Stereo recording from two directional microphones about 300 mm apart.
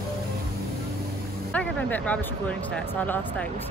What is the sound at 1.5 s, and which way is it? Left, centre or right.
Speech, centre.